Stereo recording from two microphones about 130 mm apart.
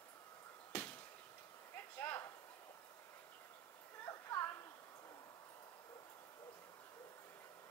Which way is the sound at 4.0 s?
20° left (ahead or behind).